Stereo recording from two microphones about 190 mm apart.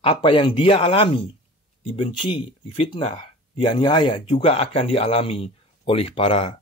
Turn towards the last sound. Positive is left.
turn(degrees=30)  # may be behind; listen again after turning